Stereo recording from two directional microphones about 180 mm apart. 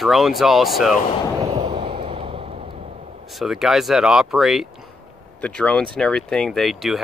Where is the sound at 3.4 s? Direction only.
Centre (ahead or behind).